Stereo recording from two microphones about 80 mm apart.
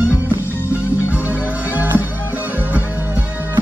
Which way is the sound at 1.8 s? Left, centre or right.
Right.